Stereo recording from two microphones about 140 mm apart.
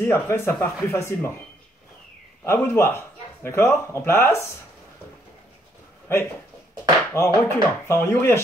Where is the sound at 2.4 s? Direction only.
20° left (ahead or behind).